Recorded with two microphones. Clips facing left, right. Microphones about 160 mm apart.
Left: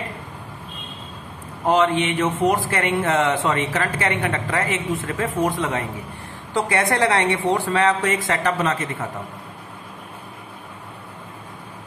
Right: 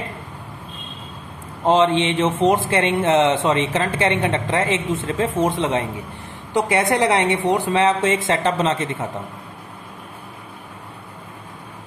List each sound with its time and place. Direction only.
1.6 s speech: 25° right (ahead or behind)